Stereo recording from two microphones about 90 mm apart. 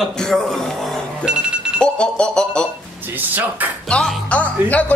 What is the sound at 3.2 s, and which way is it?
Speech, 20° right (ahead or behind).